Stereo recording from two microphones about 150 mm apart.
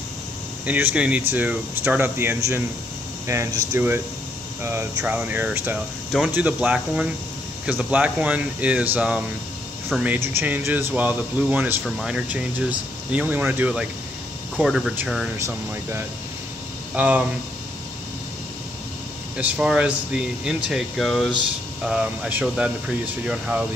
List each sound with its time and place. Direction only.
0.7 s speech: 10° right (ahead or behind)
10.1 s speech: 15° right (ahead or behind)
15.3 s speech: 20° right (ahead or behind)
19.3 s speech: 5° right (ahead or behind)